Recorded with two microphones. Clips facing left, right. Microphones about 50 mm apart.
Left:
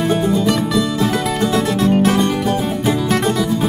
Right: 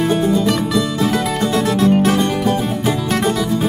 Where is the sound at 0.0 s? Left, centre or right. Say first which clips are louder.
Right 1 dB; centre.